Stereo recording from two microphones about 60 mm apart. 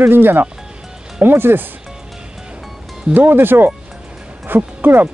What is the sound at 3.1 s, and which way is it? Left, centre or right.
Speech, right.